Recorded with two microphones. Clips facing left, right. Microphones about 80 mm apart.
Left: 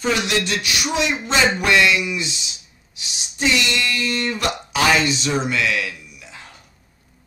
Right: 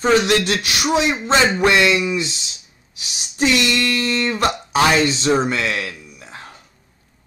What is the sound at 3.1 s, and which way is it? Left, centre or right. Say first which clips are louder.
Speech: right 3 dB; right.